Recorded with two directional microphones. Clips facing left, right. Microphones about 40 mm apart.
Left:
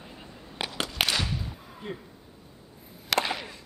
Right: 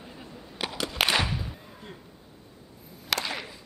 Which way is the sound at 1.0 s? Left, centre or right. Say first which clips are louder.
Right 4 dB; right.